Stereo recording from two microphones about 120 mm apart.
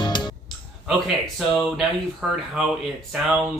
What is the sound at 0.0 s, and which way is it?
Music, 40° left (ahead or behind).